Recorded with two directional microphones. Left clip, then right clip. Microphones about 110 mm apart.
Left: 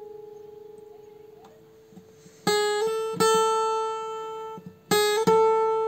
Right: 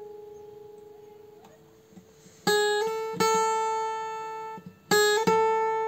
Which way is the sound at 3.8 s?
45° left (ahead or behind).